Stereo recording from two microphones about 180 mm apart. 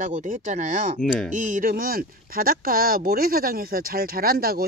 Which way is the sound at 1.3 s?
45° right (ahead or behind).